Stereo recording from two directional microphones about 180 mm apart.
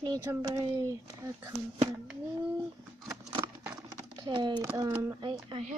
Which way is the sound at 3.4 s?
15° right (ahead or behind).